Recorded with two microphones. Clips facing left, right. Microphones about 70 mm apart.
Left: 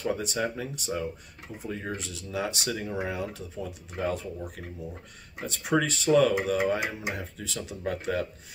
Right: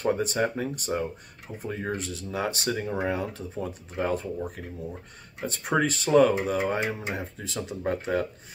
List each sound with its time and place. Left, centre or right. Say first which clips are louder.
0.0 s speech: right 4 dB; right
5.5 s speech: right 1 dB; right